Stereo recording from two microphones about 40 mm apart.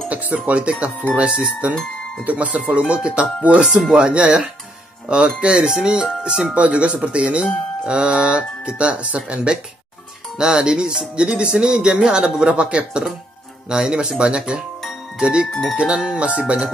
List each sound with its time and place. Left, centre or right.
0.1 s speech: right
3.9 s speech: right
6.5 s speech: right